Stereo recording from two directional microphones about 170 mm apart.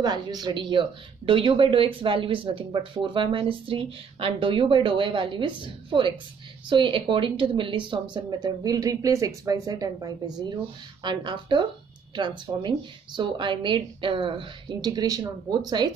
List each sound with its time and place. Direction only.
0.0 s speech: 25° right (ahead or behind)